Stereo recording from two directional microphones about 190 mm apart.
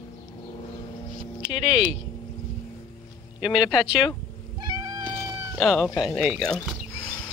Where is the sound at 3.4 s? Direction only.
Centre (ahead or behind).